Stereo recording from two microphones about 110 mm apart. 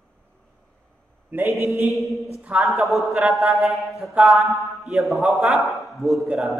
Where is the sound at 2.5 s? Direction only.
15° right (ahead or behind).